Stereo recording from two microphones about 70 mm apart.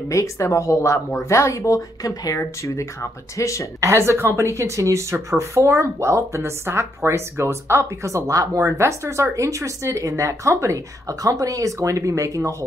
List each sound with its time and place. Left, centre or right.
0.1 s speech: left
3.8 s speech: right